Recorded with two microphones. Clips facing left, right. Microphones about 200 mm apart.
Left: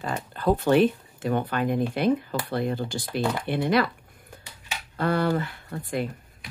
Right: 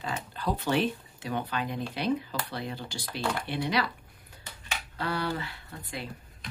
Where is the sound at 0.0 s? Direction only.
50° left (ahead or behind).